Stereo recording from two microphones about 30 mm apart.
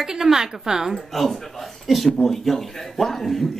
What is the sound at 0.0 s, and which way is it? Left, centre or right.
Speech, centre.